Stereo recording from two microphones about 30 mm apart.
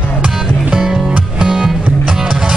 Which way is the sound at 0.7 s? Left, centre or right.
Centre.